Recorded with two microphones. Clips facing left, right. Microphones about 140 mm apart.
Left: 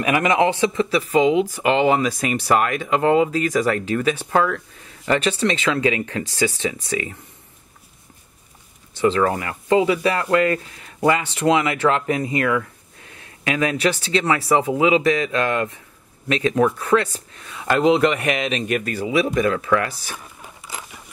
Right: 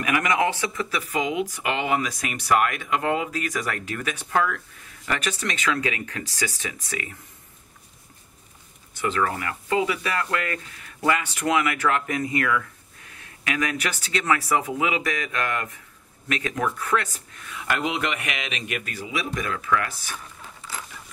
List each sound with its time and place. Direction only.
0.0 s speech: 25° left (ahead or behind)
8.9 s speech: 30° left (ahead or behind)
20.1 s zipper: 15° left (ahead or behind)